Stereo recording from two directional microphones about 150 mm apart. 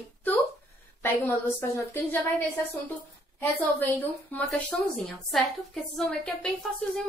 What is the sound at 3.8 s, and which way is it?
A woman's voice, 10° left (ahead or behind).